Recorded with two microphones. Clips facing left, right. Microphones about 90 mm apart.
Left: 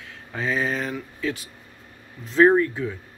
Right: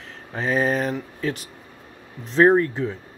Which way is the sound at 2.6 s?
35° right (ahead or behind).